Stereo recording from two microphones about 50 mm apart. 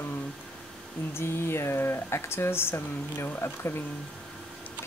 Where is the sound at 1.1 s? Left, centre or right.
Left.